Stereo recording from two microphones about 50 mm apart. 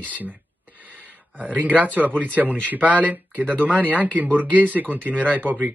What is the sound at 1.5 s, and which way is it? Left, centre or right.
Speech, right.